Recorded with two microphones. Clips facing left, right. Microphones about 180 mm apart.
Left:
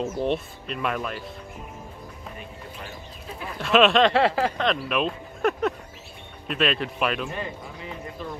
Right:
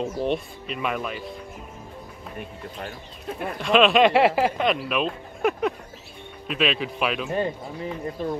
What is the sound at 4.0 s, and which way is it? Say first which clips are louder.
Speech: right 2 dB; 10° right (ahead or behind).